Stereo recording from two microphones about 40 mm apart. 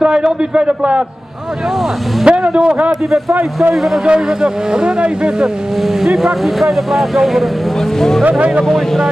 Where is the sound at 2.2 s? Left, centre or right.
Right.